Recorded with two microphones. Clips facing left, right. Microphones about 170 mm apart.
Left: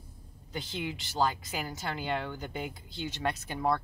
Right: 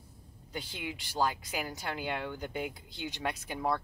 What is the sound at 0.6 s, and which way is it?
Speech, 10° right (ahead or behind).